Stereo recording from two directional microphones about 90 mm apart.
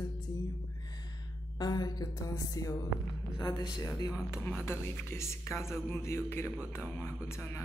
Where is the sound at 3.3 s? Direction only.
50° left (ahead or behind).